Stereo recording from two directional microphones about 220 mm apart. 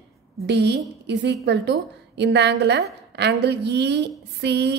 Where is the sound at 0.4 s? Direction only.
50° right (ahead or behind).